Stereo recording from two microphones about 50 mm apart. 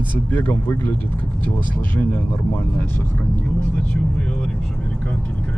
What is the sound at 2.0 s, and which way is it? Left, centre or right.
Speech, left.